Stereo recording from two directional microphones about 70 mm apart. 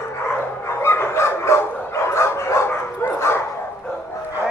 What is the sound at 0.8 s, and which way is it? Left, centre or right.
Dog, left.